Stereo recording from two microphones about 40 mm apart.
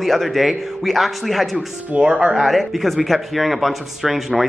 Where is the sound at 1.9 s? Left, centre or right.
Right.